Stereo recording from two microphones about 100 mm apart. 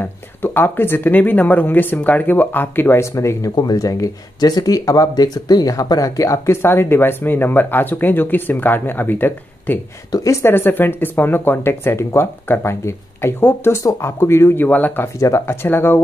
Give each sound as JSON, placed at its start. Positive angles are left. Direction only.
{"t": 0.0, "sound": "speech", "side_deg": 20}
{"t": 10.1, "sound": "speech", "side_deg": 30}
{"t": 15.1, "sound": "speech", "side_deg": 30}